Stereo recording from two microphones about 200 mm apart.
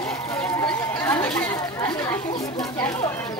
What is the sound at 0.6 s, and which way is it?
Chatter, 10° left (ahead or behind).